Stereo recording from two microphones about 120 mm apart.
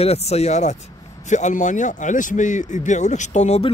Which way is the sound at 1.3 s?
90° left.